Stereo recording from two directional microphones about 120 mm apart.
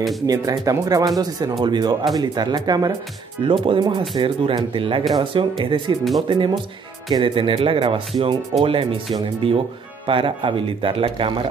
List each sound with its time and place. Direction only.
0.3 s speech: 30° right (ahead or behind)
3.4 s speech: 45° right (ahead or behind)